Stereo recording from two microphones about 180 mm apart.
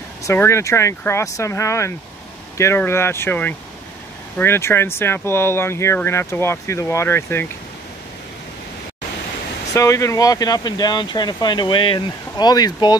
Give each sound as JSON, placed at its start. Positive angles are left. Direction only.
{"t": 0.2, "sound": "speech", "side_deg": 15}
{"t": 9.8, "sound": "speech", "side_deg": 15}